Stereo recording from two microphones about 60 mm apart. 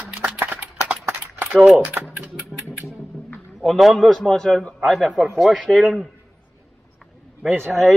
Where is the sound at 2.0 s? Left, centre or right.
Right.